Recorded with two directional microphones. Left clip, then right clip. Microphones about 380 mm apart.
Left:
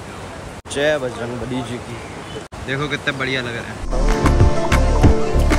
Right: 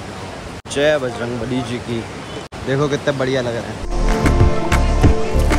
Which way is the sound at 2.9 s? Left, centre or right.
Centre.